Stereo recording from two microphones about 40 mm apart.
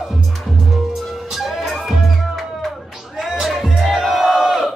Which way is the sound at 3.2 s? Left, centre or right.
Centre.